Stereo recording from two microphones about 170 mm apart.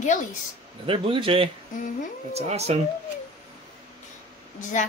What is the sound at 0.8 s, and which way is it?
Speech, 30° right (ahead or behind).